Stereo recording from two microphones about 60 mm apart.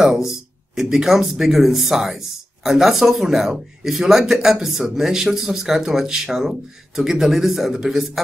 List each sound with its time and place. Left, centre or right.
0.0 s speech: centre